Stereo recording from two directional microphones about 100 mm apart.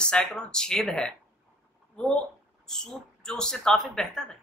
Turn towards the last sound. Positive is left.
turn(degrees=5)  # may be behind; listen again after turning